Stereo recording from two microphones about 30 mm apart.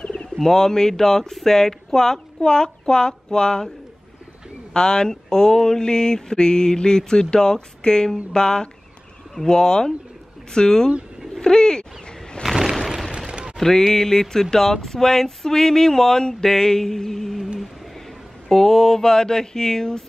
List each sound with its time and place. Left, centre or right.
0.0 s bird: left
0.4 s speech: centre
2.4 s mantra: left
4.7 s mantra: left
11.4 s bird: left
12.4 s a sound: left
13.6 s speech: centre
18.5 s mantra: centre